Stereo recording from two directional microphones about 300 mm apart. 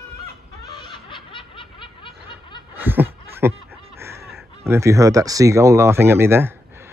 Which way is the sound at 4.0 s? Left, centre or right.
Centre.